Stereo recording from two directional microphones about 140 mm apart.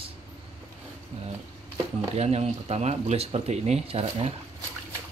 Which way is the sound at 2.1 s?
50° right (ahead or behind).